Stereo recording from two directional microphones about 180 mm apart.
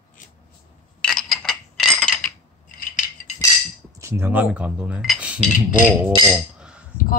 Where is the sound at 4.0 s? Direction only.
15° right (ahead or behind).